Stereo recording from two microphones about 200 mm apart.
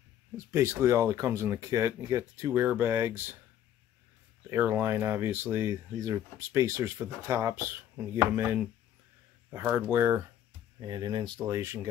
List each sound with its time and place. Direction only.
0.5 s speech: 10° right (ahead or behind)
4.5 s speech: 10° right (ahead or behind)
10.8 s speech: 20° right (ahead or behind)